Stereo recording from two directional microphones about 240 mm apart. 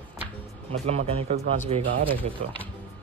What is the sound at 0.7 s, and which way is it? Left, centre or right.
Speech, right.